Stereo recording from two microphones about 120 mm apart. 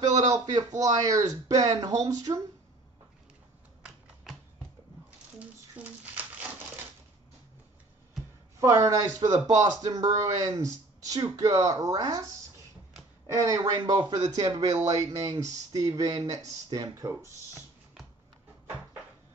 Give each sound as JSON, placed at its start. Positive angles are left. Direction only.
{"t": 0.6, "sound": "speech", "side_deg": -30}
{"t": 3.8, "sound": "typing", "side_deg": 0}
{"t": 5.4, "sound": "a sound", "side_deg": -10}
{"t": 8.5, "sound": "speech", "side_deg": -25}
{"t": 13.3, "sound": "speech", "side_deg": -30}